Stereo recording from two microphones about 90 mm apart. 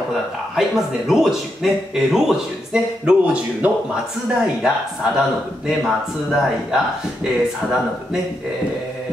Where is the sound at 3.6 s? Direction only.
15° right (ahead or behind).